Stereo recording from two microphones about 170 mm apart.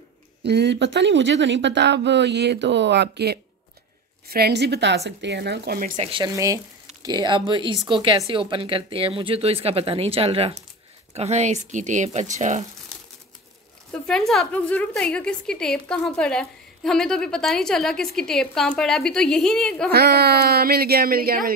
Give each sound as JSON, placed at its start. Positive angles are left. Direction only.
{"t": 0.4, "sound": "speech", "side_deg": -80}
{"t": 6.0, "sound": "speech", "side_deg": -30}
{"t": 6.3, "sound": "a woman's voice", "side_deg": -20}
{"t": 14.0, "sound": "a woman's voice", "side_deg": 5}
{"t": 19.9, "sound": "speech", "side_deg": -70}